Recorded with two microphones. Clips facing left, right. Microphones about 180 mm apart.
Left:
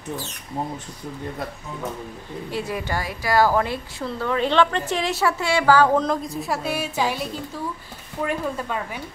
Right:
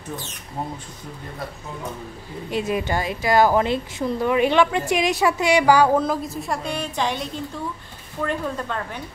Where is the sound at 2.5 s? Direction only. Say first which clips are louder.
Right 4 dB; 20° right (ahead or behind).